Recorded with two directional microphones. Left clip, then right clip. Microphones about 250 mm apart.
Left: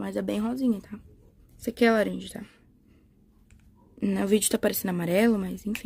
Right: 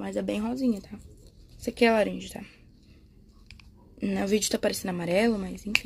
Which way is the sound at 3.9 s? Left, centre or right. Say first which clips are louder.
Left 2 dB; left.